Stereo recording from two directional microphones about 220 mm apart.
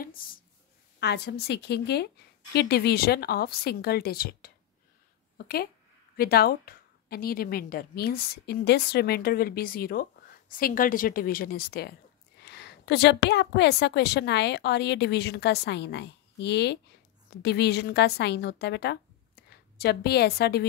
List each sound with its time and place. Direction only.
0.0 s a sound: 40° left (ahead or behind)
0.9 s a woman's voice: 50° left (ahead or behind)
6.1 s a woman's voice: 45° left (ahead or behind)